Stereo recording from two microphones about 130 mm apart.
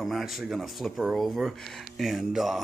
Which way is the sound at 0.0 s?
Centre (ahead or behind).